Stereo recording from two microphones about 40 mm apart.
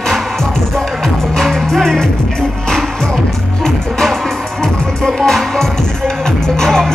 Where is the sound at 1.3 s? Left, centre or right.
Centre.